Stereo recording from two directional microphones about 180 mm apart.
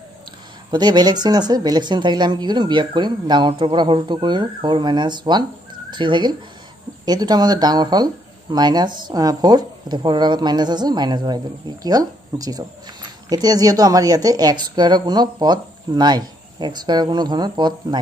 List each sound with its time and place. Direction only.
0.7 s speech: 25° right (ahead or behind)